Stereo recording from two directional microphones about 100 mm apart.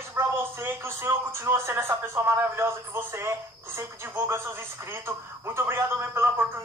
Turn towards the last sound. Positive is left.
turn(degrees=-25)  # may be behind; listen again after turning